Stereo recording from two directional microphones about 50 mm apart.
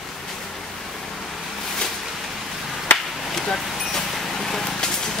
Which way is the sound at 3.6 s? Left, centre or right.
Centre.